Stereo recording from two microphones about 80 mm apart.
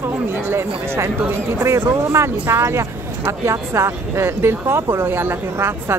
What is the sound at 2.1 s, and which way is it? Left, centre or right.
Speech, right.